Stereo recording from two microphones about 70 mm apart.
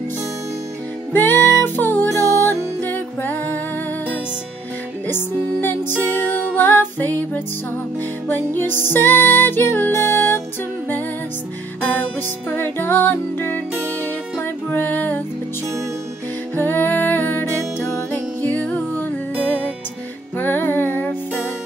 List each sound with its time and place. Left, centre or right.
1.1 s music: left
2.0 s music: right
2.8 s music: left
11.8 s music: left
16.5 s music: left
18.6 s music: centre
20.3 s music: left